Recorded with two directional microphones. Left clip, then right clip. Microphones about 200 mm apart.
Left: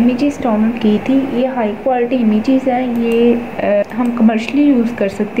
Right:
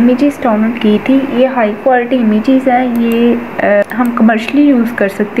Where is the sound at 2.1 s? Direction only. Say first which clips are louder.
Right 3 dB; 20° right (ahead or behind).